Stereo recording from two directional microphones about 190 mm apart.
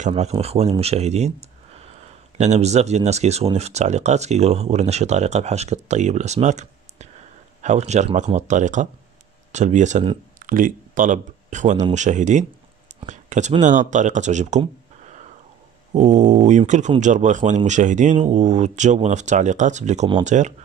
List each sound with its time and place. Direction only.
0.0 s speech: 35° right (ahead or behind)
2.3 s speech: 35° right (ahead or behind)
15.9 s speech: 40° right (ahead or behind)